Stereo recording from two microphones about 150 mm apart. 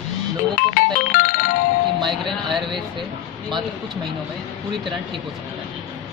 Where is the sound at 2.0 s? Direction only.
Centre (ahead or behind).